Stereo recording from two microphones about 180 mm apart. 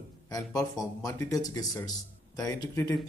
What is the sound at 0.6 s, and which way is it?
Speech, 20° left (ahead or behind).